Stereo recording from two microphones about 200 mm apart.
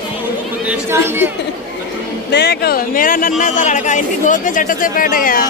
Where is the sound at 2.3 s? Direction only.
55° left (ahead or behind).